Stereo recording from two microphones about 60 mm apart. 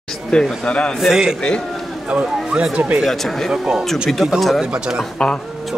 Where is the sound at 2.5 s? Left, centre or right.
Centre.